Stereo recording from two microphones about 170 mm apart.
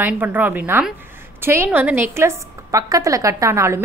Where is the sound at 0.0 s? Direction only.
10° right (ahead or behind).